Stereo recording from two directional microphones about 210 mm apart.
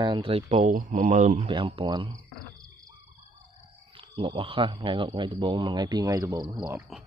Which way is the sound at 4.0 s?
25° right (ahead or behind).